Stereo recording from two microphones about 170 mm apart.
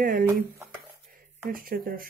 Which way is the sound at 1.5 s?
60° right (ahead or behind).